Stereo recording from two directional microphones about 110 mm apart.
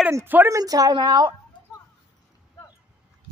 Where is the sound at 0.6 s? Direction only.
35° right (ahead or behind).